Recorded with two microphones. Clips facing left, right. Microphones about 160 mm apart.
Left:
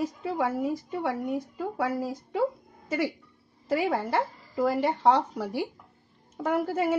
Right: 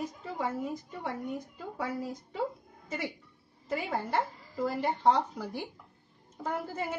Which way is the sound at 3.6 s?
90° left.